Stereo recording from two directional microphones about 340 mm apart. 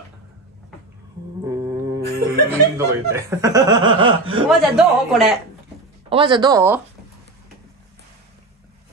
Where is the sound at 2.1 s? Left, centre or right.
Right.